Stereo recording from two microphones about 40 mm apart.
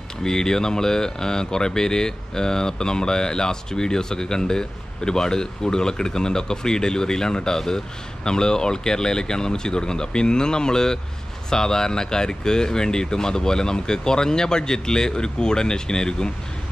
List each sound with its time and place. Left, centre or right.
0.2 s speech: centre